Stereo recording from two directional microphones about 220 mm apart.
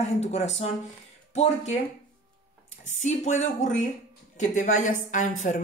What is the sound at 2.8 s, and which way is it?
Speech, 30° left (ahead or behind).